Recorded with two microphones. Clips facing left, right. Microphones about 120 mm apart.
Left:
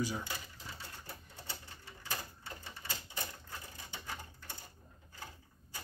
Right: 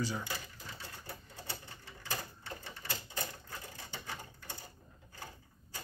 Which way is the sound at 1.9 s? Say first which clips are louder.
Right 2 dB; 5° left (ahead or behind).